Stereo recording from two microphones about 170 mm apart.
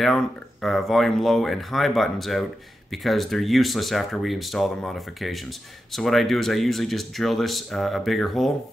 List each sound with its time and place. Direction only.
0.0 s speech: centre (ahead or behind)